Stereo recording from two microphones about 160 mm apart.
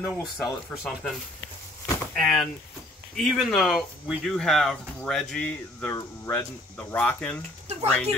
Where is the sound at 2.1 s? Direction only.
5° left (ahead or behind).